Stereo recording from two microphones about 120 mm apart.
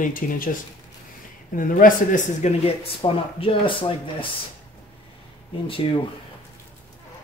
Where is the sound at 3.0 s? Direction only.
50° left (ahead or behind).